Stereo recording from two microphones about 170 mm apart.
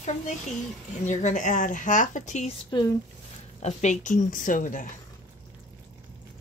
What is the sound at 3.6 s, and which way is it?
A woman's voice, 40° left (ahead or behind).